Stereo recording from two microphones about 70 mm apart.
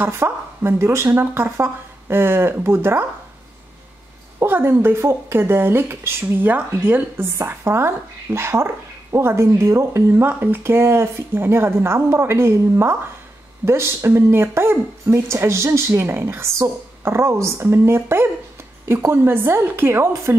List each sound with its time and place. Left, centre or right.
0.0 s speech: right
4.4 s speech: right